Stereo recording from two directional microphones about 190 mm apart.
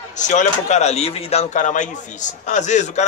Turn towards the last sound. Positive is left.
turn(degrees=40)  # may be behind; listen again after turning